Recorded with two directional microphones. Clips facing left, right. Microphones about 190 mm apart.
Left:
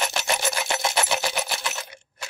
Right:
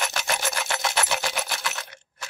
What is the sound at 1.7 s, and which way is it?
Coin, 10° left (ahead or behind).